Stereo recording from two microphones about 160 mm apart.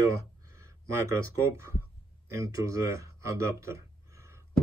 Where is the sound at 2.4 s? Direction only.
20° right (ahead or behind).